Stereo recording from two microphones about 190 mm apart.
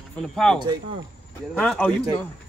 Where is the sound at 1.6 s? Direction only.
Centre (ahead or behind).